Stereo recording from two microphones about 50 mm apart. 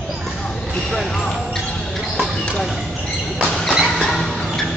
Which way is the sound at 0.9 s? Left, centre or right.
Centre.